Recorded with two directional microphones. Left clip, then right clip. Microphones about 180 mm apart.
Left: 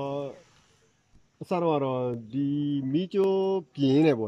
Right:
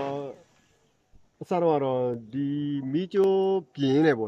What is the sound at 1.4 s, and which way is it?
Speech, centre (ahead or behind).